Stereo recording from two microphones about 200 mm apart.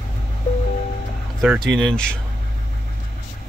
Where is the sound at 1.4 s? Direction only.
5° right (ahead or behind).